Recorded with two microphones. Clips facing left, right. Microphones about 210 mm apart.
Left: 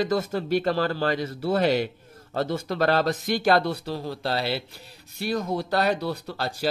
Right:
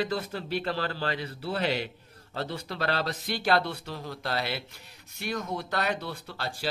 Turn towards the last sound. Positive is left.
turn(degrees=40)  # may be behind; listen again after turning